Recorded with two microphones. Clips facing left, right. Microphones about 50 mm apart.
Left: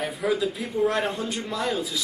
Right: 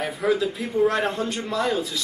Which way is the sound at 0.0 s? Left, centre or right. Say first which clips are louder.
Right 2 dB; centre.